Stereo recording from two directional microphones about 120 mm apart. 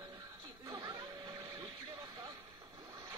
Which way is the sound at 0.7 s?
30° right (ahead or behind).